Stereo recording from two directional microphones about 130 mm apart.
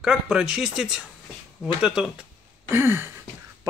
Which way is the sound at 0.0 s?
5° right (ahead or behind).